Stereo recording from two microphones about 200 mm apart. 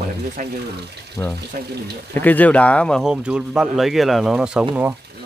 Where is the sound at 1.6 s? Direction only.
50° right (ahead or behind).